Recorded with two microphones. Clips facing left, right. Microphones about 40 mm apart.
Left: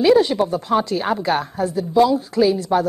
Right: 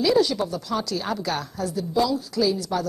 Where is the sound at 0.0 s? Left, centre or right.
Left.